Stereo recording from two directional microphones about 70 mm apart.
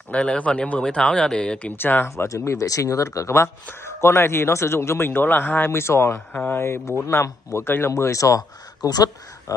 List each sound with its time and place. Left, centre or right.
0.1 s speech: centre
1.8 s speech: left
2.0 s a man's voice: left
7.9 s speech: left